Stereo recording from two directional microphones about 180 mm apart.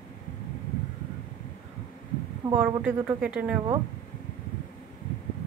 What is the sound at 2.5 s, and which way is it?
A woman's voice, 10° right (ahead or behind).